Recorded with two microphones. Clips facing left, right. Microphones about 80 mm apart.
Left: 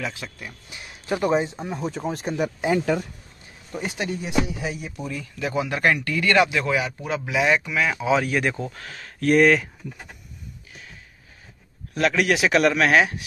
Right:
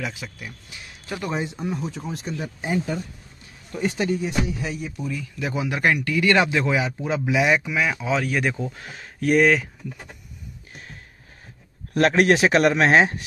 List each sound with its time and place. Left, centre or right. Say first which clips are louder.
0.0 s speech: even; centre
1.0 s speech: left 6 dB; left
1.8 s speech: left 3 dB; left
2.3 s speech: left 4 dB; left
3.7 s speech: right 4 dB; centre
5.4 s speech: left 1 dB; centre
6.3 s a man's voice: left 2 dB; right; by 8.7 s centre
8.7 s a man's voice: even; centre
9.2 s speech: left 1 dB; centre
10.7 s a sound: right 5 dB; right
12.1 s a man's voice: right 2 dB; right